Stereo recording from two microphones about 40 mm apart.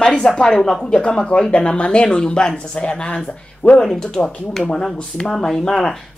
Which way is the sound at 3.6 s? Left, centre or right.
Left.